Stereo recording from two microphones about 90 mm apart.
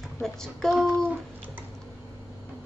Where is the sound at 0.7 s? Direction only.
10° right (ahead or behind).